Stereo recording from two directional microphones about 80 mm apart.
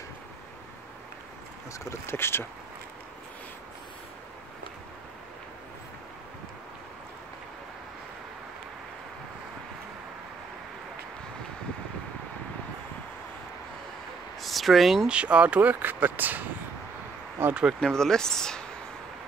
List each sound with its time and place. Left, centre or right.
1.7 s speech: left
14.4 s a sound: centre
15.0 s speech: centre; by 17.5 s right
17.7 s speech: centre